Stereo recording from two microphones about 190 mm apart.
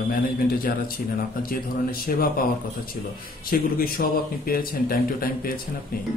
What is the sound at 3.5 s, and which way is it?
Speech, 50° left (ahead or behind).